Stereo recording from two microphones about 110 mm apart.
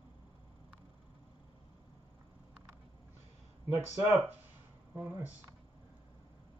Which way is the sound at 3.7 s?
20° right (ahead or behind).